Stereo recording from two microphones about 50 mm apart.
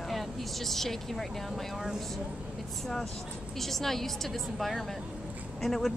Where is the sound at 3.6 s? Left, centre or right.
Centre.